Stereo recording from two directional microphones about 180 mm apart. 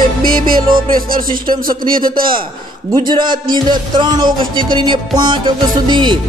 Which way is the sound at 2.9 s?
25° right (ahead or behind).